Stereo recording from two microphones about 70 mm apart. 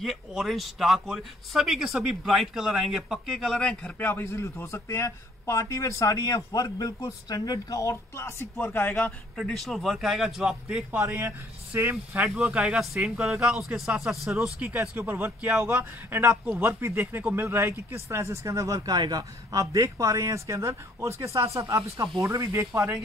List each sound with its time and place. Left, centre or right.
0.0 s speech: centre
4.0 s a man's voice: left
9.5 s speech: centre
11.7 s speech: right
12.4 s speech: centre
13.4 s speech: centre
14.8 s a man's voice: right
18.9 s speech: right
22.7 s a man's voice: right